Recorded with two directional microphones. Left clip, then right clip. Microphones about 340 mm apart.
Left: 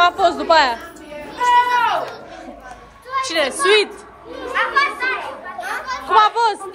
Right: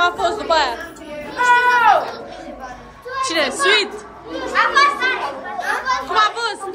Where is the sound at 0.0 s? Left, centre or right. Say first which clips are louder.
Left 3 dB; left.